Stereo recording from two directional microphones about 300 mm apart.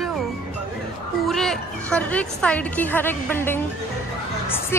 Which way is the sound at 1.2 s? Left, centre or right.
Centre.